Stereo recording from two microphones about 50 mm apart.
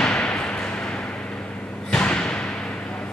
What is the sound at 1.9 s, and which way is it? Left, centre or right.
Thump, centre.